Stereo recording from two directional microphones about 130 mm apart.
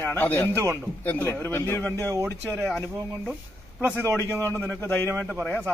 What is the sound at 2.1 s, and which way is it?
Speech, 25° right (ahead or behind).